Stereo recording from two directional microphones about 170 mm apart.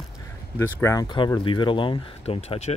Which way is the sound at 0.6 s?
15° left (ahead or behind).